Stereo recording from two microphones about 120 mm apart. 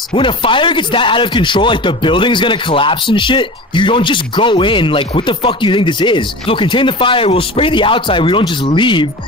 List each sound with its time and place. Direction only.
0.1 s speech: 45° left (ahead or behind)